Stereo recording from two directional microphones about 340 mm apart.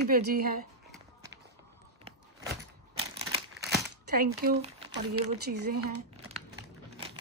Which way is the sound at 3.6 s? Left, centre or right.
Right.